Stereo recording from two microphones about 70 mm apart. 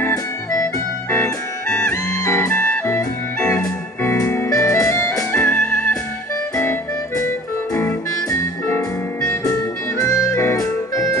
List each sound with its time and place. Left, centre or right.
1.9 s music: left
2.5 s music: centre
3.5 s music: left
4.5 s music: left
5.4 s music: centre
8.4 s music: left
9.9 s music: left